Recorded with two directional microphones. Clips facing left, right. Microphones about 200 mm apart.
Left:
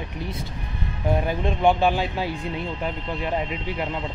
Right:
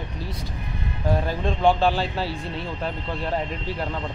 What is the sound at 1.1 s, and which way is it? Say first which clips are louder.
Speech: left 1 dB; 15° left (ahead or behind).